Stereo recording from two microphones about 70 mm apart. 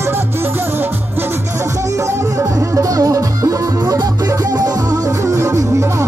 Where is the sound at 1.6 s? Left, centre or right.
Right.